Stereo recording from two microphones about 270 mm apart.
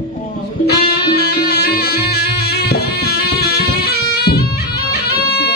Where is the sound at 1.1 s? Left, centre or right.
Left.